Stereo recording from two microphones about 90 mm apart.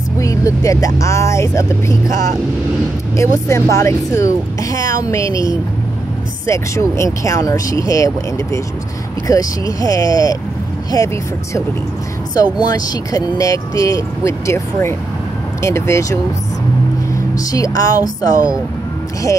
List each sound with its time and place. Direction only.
0.2 s speech: 35° left (ahead or behind)
3.2 s speech: 35° left (ahead or behind)
12.5 s speech: 45° left (ahead or behind)